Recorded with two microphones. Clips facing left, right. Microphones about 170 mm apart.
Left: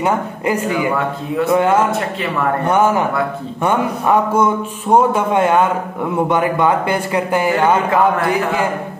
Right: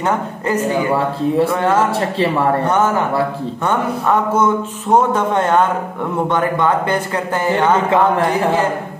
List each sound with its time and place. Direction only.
0.0 s speech: 10° left (ahead or behind)
0.7 s speech: 35° right (ahead or behind)
1.5 s speech: 10° left (ahead or behind)
1.9 s speech: 30° right (ahead or behind)
2.6 s speech: 10° left (ahead or behind)